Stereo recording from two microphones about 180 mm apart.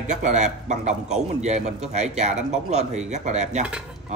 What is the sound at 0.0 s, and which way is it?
A man's voice, 40° right (ahead or behind).